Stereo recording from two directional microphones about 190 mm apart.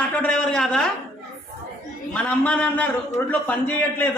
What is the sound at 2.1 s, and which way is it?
A man's voice, 5° left (ahead or behind).